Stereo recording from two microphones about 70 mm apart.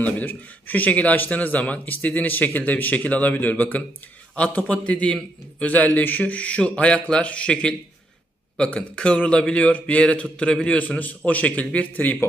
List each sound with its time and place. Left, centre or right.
0.0 s a man's voice: left